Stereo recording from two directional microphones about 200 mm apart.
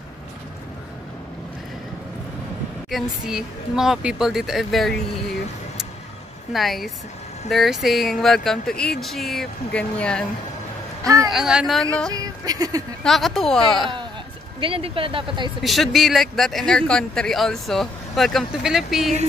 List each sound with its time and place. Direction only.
2.9 s a man's voice: centre (ahead or behind)
6.5 s a man's voice: centre (ahead or behind)
11.2 s a man's voice: 5° right (ahead or behind)
12.1 s speech: 20° right (ahead or behind)
13.0 s a man's voice: centre (ahead or behind)
14.6 s speech: 25° right (ahead or behind)
15.6 s a man's voice: centre (ahead or behind)